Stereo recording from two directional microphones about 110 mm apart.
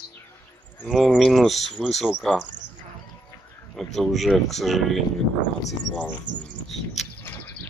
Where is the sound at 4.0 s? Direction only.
Centre (ahead or behind).